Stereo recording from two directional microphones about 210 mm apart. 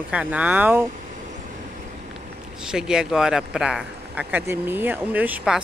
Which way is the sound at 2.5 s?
5° right (ahead or behind).